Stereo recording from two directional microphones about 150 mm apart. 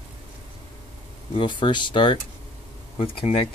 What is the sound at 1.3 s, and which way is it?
Speech, 35° left (ahead or behind).